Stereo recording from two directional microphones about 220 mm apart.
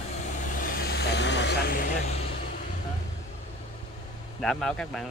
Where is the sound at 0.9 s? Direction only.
50° left (ahead or behind).